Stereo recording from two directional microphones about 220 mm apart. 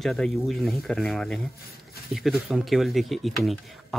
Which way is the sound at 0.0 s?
Centre (ahead or behind).